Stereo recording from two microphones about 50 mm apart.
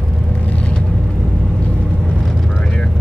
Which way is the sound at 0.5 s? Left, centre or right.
Left.